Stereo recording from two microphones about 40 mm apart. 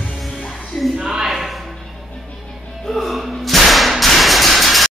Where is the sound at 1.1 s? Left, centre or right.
Centre.